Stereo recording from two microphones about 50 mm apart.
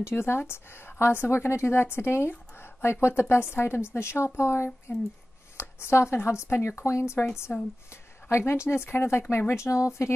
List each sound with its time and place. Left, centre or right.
0.1 s a woman's voice: left
7.5 s speech: left
7.9 s a woman's voice: left
9.6 s speech: left